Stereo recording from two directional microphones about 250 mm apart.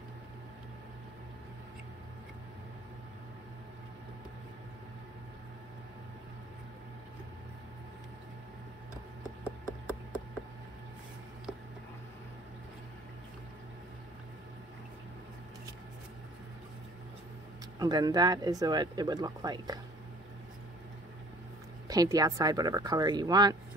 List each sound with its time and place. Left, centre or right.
9.4 s a sound: centre
17.7 s speech: centre
21.8 s speech: centre